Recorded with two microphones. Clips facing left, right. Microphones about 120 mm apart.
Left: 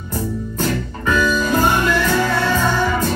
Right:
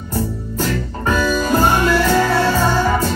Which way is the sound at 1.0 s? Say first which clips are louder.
Even; 40° right (ahead or behind).